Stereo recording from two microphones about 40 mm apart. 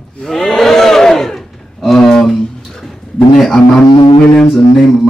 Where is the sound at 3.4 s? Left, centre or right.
Centre.